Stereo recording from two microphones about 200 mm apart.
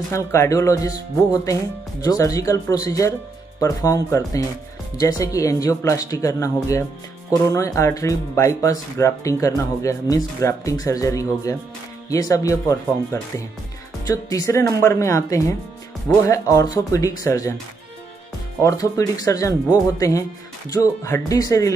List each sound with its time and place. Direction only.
0.1 s speech: 15° left (ahead or behind)
18.6 s speech: 15° left (ahead or behind)